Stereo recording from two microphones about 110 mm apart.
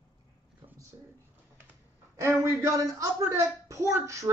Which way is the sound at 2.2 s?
25° right (ahead or behind).